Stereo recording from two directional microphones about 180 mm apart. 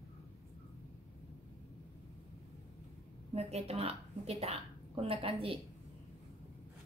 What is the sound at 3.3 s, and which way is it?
A woman's voice, 35° right (ahead or behind).